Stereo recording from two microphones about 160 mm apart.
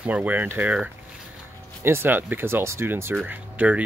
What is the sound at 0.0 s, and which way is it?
Speech, 10° right (ahead or behind).